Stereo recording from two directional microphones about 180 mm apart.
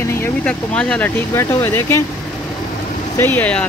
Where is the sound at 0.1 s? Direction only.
10° left (ahead or behind).